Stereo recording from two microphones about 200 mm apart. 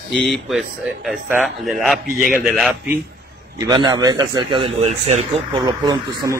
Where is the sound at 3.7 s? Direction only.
20° right (ahead or behind).